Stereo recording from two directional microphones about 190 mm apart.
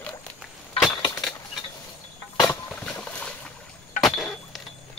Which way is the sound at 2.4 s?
5° left (ahead or behind).